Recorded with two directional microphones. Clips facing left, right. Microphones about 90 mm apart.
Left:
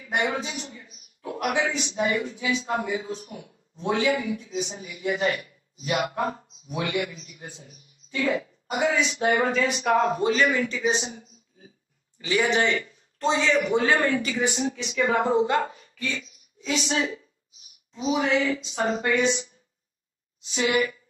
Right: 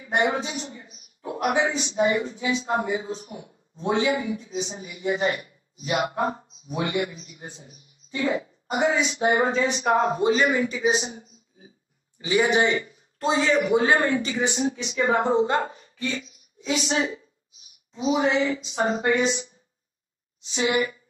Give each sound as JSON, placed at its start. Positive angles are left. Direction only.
{"t": 0.0, "sound": "a sound", "side_deg": -20}
{"t": 0.4, "sound": "a man's voice", "side_deg": -20}
{"t": 11.1, "sound": "a sound", "side_deg": -20}
{"t": 12.2, "sound": "speech", "side_deg": -20}
{"t": 13.2, "sound": "a woman's voice", "side_deg": -5}
{"t": 18.1, "sound": "a woman's voice", "side_deg": -20}
{"t": 20.5, "sound": "speech", "side_deg": -25}